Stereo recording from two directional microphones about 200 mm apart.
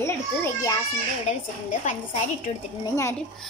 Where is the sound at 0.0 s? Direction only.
15° left (ahead or behind).